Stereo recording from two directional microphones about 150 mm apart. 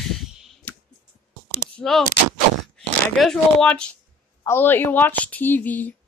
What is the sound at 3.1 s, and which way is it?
A woman's voice, centre (ahead or behind).